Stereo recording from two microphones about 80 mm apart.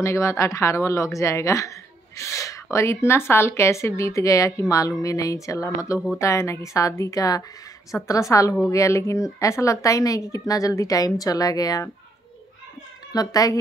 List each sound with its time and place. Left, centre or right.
0.0 s a woman's voice: left
13.1 s speech: left